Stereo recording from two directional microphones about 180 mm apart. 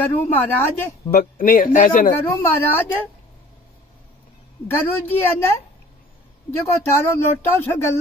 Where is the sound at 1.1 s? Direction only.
50° left (ahead or behind).